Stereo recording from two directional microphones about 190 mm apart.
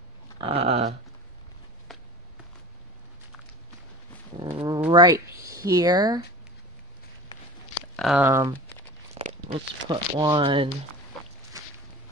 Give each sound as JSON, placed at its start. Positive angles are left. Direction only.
{"t": 0.4, "sound": "dog", "side_deg": -30}
{"t": 1.9, "sound": "walk", "side_deg": 0}
{"t": 4.4, "sound": "a sound", "side_deg": -25}
{"t": 4.9, "sound": "speech", "side_deg": -20}
{"t": 7.9, "sound": "speech", "side_deg": 0}
{"t": 8.3, "sound": "speech", "side_deg": -15}
{"t": 9.1, "sound": "speech", "side_deg": -30}
{"t": 11.6, "sound": "a sound", "side_deg": -15}